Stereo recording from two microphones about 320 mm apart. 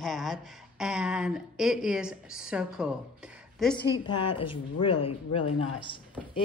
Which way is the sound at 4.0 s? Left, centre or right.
Centre.